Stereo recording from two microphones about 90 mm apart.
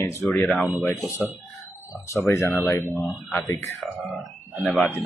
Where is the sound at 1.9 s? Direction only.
35° left (ahead or behind).